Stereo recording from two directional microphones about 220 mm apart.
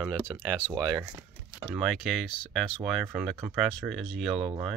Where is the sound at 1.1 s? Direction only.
15° right (ahead or behind).